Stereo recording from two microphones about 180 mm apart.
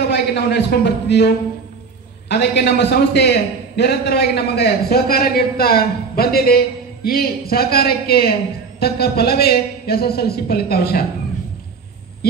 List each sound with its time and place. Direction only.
0.1 s a man's voice: 70° left (ahead or behind)